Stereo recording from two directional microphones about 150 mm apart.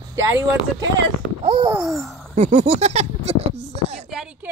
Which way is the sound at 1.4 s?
35° right (ahead or behind).